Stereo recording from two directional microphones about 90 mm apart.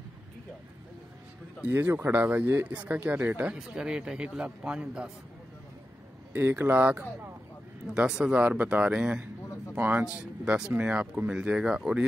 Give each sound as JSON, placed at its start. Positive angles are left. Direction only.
{"t": 1.6, "sound": "speech", "side_deg": -20}
{"t": 3.5, "sound": "a man's voice", "side_deg": -10}
{"t": 6.3, "sound": "speech", "side_deg": -25}
{"t": 7.9, "sound": "a man's voice", "side_deg": -10}